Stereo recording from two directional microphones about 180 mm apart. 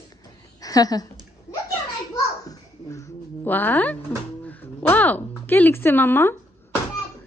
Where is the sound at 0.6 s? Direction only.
20° left (ahead or behind).